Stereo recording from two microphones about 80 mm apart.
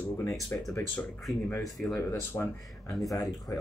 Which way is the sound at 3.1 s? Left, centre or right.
Left.